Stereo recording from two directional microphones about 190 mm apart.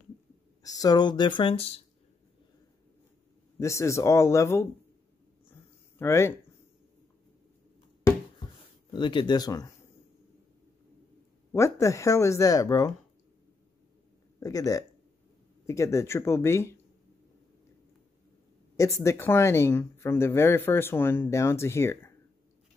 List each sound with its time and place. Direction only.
0.6 s speech: 20° left (ahead or behind)
3.5 s speech: 15° left (ahead or behind)
5.5 s a sound: 15° left (ahead or behind)
8.9 s speech: 25° left (ahead or behind)
11.5 s speech: 15° left (ahead or behind)
14.4 s speech: 20° left (ahead or behind)
19.0 s speech: 10° left (ahead or behind)